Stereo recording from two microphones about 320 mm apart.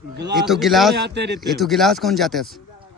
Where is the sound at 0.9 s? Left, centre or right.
Right.